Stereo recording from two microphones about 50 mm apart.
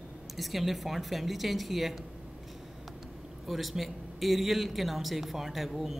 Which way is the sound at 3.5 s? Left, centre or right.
Centre.